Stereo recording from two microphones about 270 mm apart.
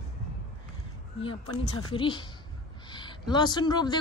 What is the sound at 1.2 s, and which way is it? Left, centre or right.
A man's voice, centre.